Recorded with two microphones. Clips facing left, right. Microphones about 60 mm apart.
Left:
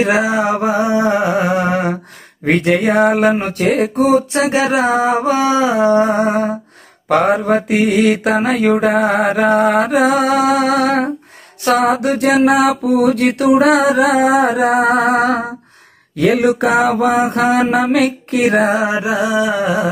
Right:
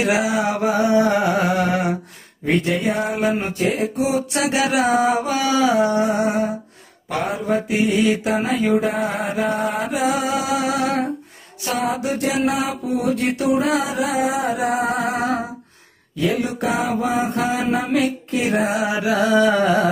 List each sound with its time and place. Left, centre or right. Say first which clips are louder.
0.0 s music: left 5 dB; left
2.4 s mantra: left 6 dB; left
4.1 s mantra: left 7 dB; left
7.1 s mantra: left 9 dB; left
16.2 s mantra: left 8 dB; left
18.7 s music: left 4 dB; left
19.2 s a sound: right 3 dB; centre